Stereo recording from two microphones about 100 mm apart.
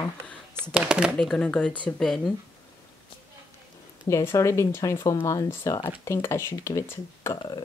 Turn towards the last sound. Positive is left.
turn(degrees=30)  # may be behind; listen again after turning